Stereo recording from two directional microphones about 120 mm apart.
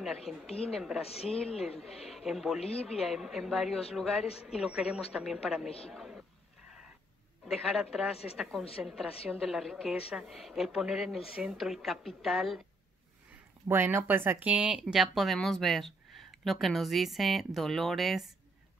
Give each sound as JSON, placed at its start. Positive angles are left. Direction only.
{"t": 0.0, "sound": "speech", "side_deg": 0}
{"t": 1.0, "sound": "speech", "side_deg": 55}
{"t": 1.5, "sound": "a man's voice", "side_deg": 5}
{"t": 7.4, "sound": "speech", "side_deg": 0}
{"t": 8.1, "sound": "speech", "side_deg": 55}
{"t": 8.4, "sound": "speech", "side_deg": 0}
{"t": 13.7, "sound": "speech", "side_deg": -20}